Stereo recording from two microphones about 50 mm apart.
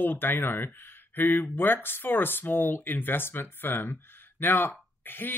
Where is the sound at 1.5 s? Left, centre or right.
Left.